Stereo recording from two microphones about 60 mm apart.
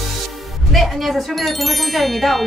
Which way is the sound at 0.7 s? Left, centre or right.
Centre.